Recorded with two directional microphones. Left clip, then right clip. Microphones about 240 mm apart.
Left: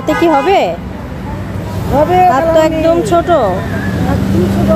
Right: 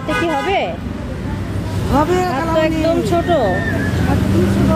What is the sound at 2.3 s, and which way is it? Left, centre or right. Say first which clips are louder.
Speech: left 7 dB; centre.